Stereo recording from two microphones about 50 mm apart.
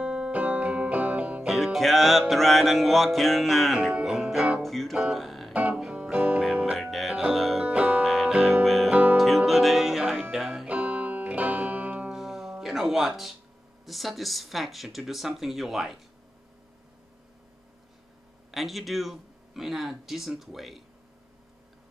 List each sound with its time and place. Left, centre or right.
0.0 s music: centre
0.3 s music: right
1.5 s music: centre
4.6 s music: centre
5.5 s music: right
6.8 s music: centre
7.6 s music: right
8.0 s music: centre
10.7 s music: right
12.1 s music: centre
18.5 s music: centre